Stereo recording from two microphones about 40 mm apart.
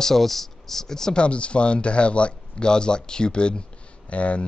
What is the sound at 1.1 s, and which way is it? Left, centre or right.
A man's voice, left.